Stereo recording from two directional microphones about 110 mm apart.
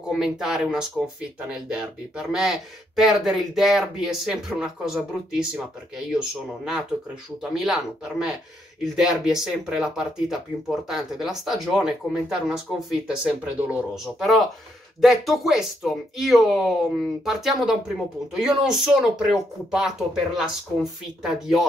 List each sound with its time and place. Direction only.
0.1 s speech: 5° right (ahead or behind)